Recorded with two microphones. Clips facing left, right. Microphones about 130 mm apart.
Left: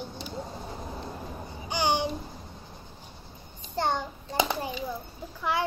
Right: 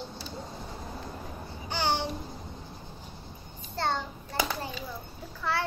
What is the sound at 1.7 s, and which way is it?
Babbling, 15° left (ahead or behind).